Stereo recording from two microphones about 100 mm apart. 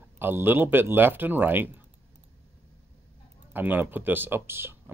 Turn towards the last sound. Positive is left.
turn(degrees=-25)  # may be behind; listen again after turning